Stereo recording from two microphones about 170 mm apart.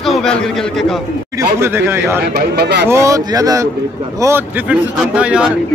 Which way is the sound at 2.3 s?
70° right (ahead or behind).